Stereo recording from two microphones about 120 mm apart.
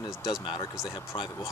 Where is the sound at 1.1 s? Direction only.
45° left (ahead or behind).